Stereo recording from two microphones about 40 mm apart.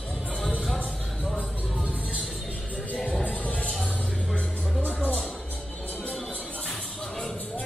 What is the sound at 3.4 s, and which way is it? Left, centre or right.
Music, left.